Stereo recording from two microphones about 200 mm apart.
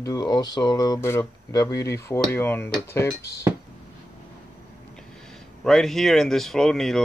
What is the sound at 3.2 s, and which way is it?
Speech, 55° left (ahead or behind).